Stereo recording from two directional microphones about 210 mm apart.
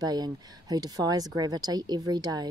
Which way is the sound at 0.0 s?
20° right (ahead or behind).